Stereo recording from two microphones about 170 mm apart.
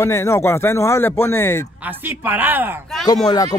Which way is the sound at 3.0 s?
25° left (ahead or behind).